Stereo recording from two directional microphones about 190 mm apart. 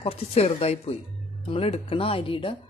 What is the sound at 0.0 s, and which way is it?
Speech, 30° left (ahead or behind).